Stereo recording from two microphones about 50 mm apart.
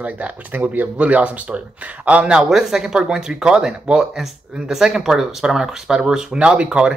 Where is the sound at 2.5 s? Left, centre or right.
Centre.